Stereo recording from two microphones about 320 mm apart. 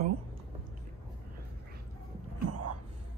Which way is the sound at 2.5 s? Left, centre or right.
Right.